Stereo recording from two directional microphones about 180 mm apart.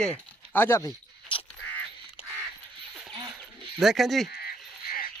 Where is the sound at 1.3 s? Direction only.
30° left (ahead or behind).